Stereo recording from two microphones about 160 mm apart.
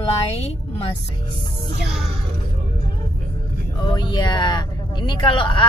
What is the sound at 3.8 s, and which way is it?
Speech, 30° left (ahead or behind).